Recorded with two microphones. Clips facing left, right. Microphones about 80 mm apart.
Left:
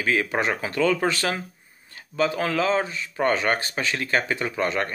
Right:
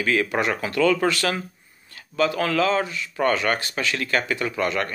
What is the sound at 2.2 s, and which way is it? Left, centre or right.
Speech, left.